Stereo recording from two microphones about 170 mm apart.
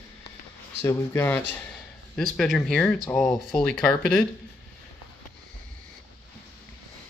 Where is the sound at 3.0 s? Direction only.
15° left (ahead or behind).